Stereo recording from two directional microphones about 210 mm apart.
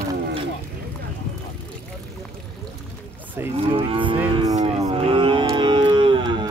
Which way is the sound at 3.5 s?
25° right (ahead or behind).